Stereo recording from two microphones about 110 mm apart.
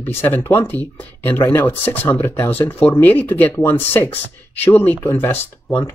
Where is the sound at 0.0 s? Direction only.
20° left (ahead or behind).